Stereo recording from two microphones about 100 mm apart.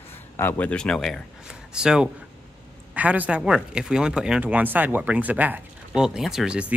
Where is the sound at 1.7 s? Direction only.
10° right (ahead or behind).